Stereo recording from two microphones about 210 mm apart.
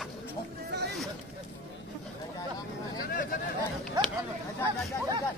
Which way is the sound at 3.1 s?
40° left (ahead or behind).